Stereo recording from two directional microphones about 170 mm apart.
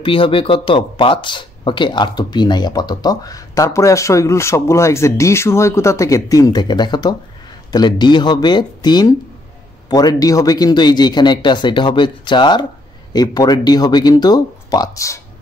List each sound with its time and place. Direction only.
0.0 s speech: 30° left (ahead or behind)